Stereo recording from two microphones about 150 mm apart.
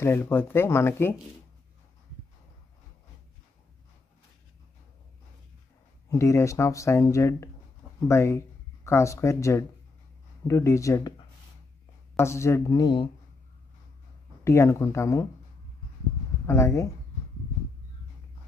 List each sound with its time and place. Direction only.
0.0 s speech: 15° left (ahead or behind)
6.0 s speech: 20° left (ahead or behind)
12.2 s speech: 20° left (ahead or behind)
14.4 s speech: 20° left (ahead or behind)
16.4 s speech: 20° left (ahead or behind)